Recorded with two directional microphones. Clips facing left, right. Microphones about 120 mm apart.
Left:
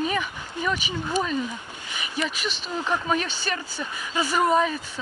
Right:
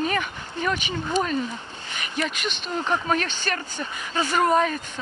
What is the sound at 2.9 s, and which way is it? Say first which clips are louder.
Speech: right 1 dB; 5° left (ahead or behind).